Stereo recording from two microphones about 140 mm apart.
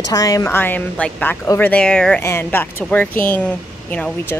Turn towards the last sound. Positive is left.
turn(degrees=10)  # may be behind; listen again after turning